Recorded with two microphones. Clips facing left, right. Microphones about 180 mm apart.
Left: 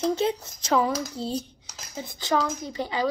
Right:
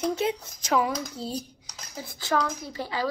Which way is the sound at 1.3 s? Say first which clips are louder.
Left 3 dB; 30° left (ahead or behind).